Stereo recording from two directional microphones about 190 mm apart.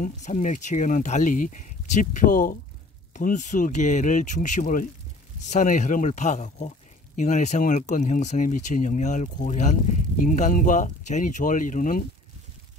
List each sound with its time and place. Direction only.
0.0 s speech: 40° left (ahead or behind)